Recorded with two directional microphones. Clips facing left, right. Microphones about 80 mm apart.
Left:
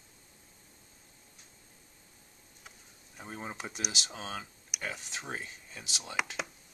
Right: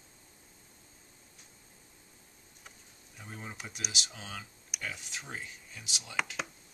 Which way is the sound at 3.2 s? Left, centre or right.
Left.